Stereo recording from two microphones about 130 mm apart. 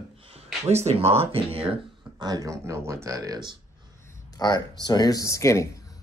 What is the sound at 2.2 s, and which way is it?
Speech, 30° right (ahead or behind).